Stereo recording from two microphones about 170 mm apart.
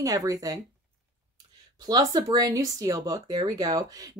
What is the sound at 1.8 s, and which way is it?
Speech, 20° right (ahead or behind).